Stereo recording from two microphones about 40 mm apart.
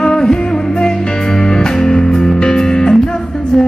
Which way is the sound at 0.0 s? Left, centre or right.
Centre.